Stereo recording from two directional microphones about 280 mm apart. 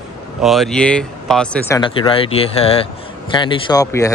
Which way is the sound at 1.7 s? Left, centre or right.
Centre.